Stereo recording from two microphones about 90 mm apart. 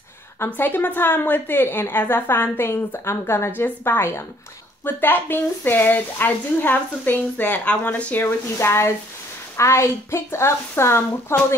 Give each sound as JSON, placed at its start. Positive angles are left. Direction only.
{"t": 0.5, "sound": "speech", "side_deg": 20}